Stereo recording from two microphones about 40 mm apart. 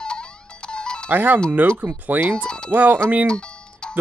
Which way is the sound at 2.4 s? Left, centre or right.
Left.